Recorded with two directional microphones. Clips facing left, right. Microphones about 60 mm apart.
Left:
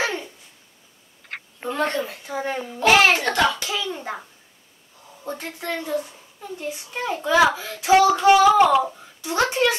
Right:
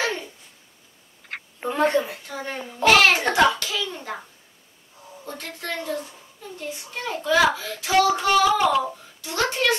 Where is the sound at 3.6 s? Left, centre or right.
Centre.